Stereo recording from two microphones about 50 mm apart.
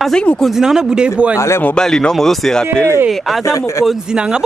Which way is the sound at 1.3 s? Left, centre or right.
Left.